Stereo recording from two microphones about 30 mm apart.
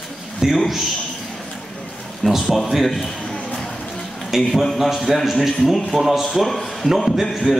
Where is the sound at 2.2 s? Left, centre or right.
Centre.